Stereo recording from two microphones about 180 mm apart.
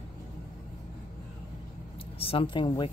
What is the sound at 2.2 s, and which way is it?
Speech, 30° left (ahead or behind).